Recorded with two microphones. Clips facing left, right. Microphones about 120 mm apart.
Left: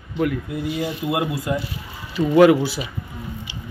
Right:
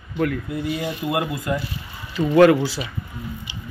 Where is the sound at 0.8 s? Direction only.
15° left (ahead or behind).